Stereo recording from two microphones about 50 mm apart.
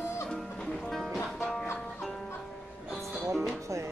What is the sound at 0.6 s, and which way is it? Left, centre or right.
Music, centre.